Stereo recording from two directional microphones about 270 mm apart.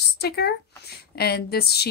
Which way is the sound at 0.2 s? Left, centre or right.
Left.